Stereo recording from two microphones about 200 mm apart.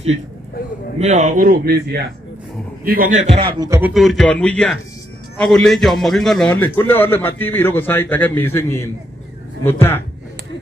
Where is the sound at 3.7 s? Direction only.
10° right (ahead or behind); by 10.0 s 10° left (ahead or behind).